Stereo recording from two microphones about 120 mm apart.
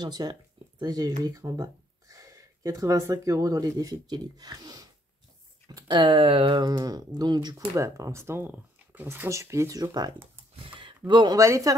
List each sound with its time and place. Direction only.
0.0 s speech: 35° right (ahead or behind)
10.6 s a sound: 45° right (ahead or behind)
11.1 s speech: 40° right (ahead or behind)
11.3 s speech: 25° right (ahead or behind)